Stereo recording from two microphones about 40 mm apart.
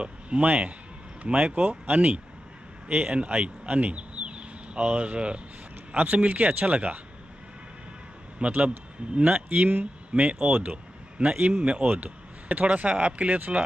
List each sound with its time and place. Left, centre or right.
0.0 s a sound: right
1.2 s speech: right
8.4 s a man's voice: right
10.1 s speech: right